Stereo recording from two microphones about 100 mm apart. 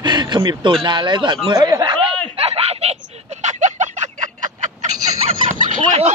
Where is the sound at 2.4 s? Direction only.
90° right.